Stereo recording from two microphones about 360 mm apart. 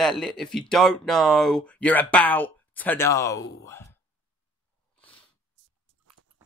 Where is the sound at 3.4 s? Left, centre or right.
Left.